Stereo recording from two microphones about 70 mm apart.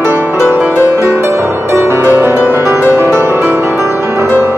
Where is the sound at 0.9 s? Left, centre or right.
Right.